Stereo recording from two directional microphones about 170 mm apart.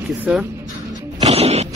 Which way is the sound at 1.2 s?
35° right (ahead or behind).